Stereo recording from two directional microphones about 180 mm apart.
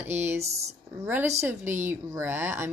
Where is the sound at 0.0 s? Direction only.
10° right (ahead or behind).